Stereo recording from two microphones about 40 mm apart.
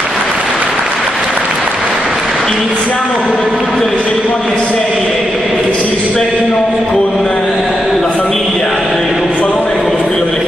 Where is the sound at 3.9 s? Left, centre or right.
Left.